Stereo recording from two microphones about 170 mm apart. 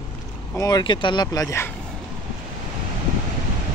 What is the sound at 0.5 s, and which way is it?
Speech, 20° left (ahead or behind).